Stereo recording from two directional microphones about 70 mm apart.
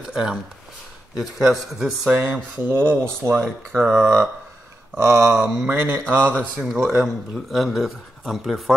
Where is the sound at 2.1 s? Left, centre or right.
Right.